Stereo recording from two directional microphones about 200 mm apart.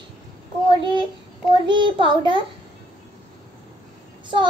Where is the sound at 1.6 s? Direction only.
25° right (ahead or behind).